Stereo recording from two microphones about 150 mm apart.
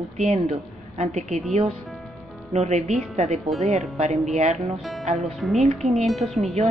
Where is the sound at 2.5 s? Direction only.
45° right (ahead or behind).